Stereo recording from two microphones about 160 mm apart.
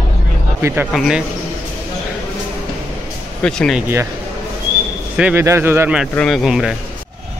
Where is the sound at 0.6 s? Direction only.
15° right (ahead or behind).